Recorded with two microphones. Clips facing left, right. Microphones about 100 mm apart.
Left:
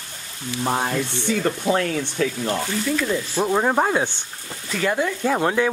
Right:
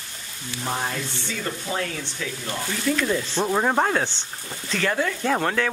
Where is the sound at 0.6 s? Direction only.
30° left (ahead or behind).